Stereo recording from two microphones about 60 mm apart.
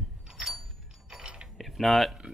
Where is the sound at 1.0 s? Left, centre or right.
Centre.